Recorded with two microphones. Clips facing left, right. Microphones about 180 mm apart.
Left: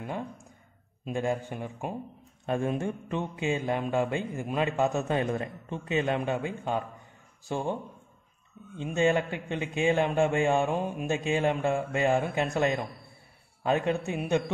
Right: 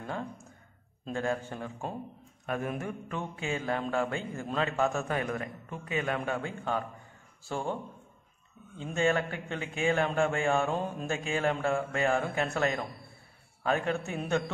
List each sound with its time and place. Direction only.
0.0 s a man's voice: 15° left (ahead or behind)
2.4 s a man's voice: 25° left (ahead or behind)
8.7 s a man's voice: 20° left (ahead or behind)